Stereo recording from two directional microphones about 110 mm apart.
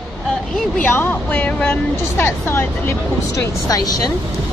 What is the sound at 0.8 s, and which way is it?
Speech, 20° left (ahead or behind).